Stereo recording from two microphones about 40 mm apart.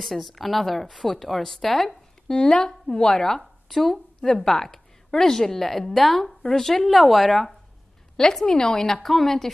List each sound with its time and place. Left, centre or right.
0.0 s speech: centre
2.2 s a woman's voice: centre
8.5 s speech: left
8.8 s a woman's voice: centre